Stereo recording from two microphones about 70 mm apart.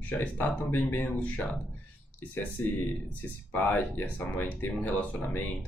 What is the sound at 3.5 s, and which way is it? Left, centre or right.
Speech, left.